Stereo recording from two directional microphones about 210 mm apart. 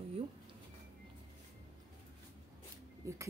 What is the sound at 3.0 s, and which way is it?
Speech, 15° right (ahead or behind).